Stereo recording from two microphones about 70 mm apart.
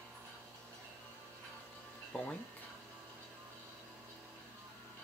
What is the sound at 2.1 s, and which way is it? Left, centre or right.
Music, centre.